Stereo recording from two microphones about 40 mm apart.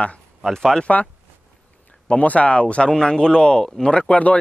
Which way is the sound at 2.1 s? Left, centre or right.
Left.